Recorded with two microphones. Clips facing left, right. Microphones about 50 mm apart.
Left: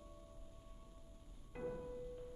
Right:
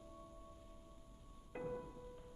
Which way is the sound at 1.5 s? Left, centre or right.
Right.